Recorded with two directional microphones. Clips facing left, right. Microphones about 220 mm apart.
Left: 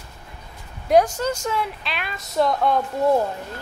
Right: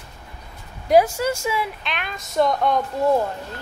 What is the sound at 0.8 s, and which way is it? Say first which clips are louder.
Speech: right 1 dB; 5° right (ahead or behind).